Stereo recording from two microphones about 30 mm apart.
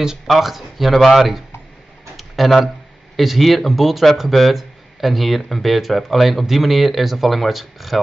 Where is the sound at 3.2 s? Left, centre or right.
Centre.